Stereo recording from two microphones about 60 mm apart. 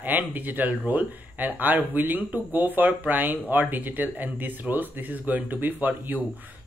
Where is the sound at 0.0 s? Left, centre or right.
Right.